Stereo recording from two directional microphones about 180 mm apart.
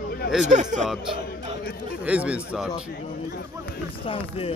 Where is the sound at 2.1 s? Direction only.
5° right (ahead or behind).